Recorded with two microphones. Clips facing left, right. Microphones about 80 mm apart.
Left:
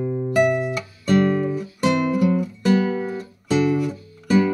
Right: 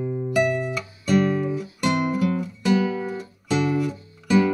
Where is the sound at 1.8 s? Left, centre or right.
Centre.